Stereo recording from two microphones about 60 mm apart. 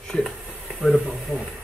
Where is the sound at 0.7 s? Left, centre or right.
Centre.